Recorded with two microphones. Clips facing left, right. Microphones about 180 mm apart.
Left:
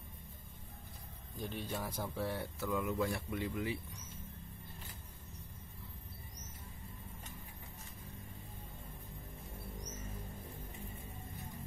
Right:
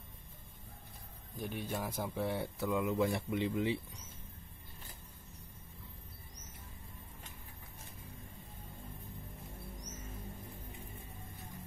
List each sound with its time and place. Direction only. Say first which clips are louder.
1.4 s speech: right 2 dB; 10° right (ahead or behind)